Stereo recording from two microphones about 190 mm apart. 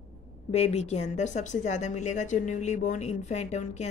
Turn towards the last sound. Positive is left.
turn(degrees=35)  # may be behind; listen again after turning